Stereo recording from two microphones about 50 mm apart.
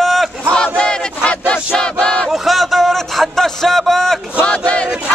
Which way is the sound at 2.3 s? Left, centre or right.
Centre.